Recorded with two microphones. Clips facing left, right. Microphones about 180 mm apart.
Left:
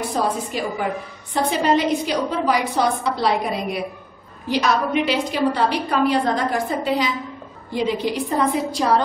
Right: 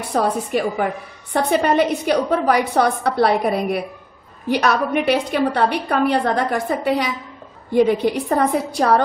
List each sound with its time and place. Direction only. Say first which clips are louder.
0.1 s a woman's voice: right 8 dB; 60° right (ahead or behind)